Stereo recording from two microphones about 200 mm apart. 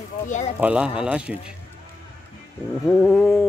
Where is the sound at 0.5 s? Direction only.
5° right (ahead or behind).